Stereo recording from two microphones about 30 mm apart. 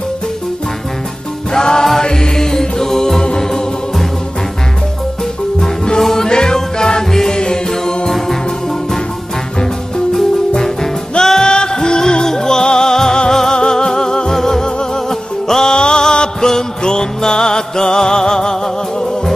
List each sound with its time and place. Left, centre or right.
1.5 s music: left
5.6 s music: centre
10.6 s music: centre